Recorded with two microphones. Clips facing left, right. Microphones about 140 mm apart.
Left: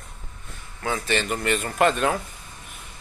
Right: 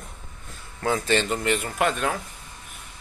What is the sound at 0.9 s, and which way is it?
Speech, 30° right (ahead or behind).